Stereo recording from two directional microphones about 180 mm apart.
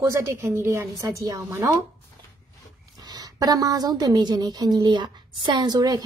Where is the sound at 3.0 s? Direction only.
20° right (ahead or behind).